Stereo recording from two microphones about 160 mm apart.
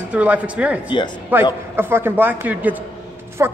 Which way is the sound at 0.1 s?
10° right (ahead or behind).